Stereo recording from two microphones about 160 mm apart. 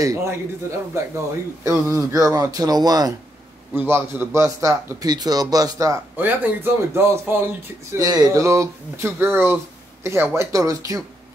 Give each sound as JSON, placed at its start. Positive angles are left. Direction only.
{"t": 0.0, "sound": "a man's voice", "side_deg": -20}